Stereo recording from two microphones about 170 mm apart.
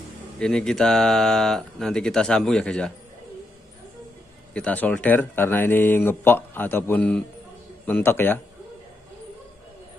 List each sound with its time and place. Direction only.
0.4 s speech: 5° left (ahead or behind)
4.6 s speech: 10° left (ahead or behind)